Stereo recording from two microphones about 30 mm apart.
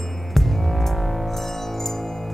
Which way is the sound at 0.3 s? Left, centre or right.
Centre.